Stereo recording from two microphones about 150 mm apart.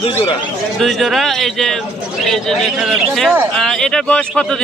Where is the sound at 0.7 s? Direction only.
Centre (ahead or behind).